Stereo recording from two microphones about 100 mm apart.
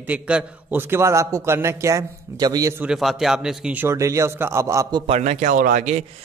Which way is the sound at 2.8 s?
5° right (ahead or behind).